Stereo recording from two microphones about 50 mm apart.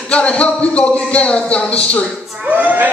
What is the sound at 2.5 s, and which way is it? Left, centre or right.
Speech, right.